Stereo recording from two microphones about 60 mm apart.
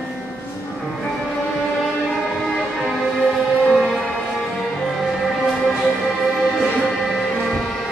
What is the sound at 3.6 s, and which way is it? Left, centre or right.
Music, centre.